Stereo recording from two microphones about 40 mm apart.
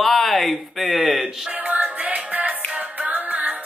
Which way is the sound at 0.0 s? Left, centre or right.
Centre.